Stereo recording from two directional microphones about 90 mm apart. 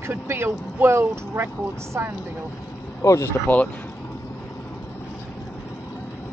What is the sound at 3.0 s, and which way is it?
Speech, 35° left (ahead or behind).